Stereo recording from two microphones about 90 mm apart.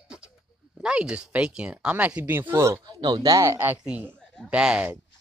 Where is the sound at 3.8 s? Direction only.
10° right (ahead or behind).